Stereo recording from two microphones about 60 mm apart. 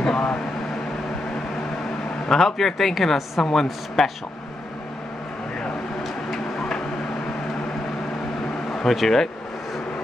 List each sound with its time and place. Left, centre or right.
0.0 s vehicle: centre
2.2 s speech: centre
4.0 s speech: centre
6.3 s a sound: centre
8.7 s speech: centre